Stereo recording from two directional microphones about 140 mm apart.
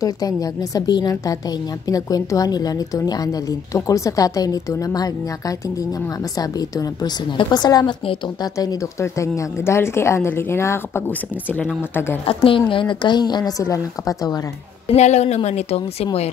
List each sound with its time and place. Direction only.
0.0 s a woman's voice: 25° left (ahead or behind)
6.3 s a woman's voice: 25° left (ahead or behind)
12.3 s speech: 40° left (ahead or behind)
14.9 s a woman's voice: 50° left (ahead or behind)